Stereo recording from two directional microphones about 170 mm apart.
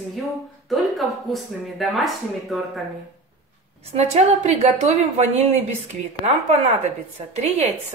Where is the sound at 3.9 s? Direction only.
40° right (ahead or behind).